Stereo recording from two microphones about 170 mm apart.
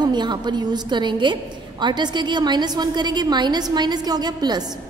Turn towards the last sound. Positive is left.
turn(degrees=-25)  # may be behind; listen again after turning